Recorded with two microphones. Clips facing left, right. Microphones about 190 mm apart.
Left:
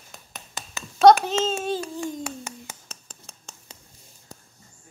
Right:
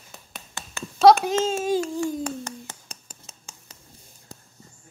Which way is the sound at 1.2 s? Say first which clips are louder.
Right 2 dB; 10° right (ahead or behind).